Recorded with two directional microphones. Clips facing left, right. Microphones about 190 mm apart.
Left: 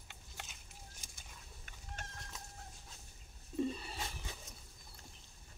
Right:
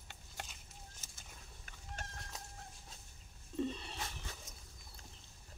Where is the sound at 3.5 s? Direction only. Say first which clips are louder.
Left 1 dB; 10° left (ahead or behind).